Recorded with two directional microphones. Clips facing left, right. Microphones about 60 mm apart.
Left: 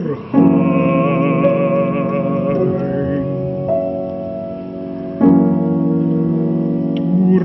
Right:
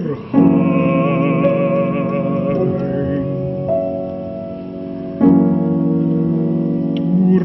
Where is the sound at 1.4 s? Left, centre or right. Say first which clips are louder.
Left 1 dB; centre.